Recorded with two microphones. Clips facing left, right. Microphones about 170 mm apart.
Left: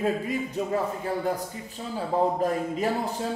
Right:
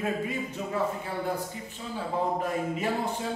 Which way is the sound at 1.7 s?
40° left (ahead or behind).